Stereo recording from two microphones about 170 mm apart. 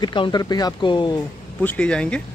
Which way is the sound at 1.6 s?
5° left (ahead or behind).